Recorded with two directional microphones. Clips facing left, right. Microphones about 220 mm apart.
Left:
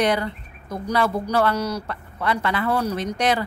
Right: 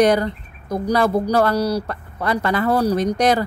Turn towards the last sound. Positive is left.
turn(degrees=-40)  # may be behind; listen again after turning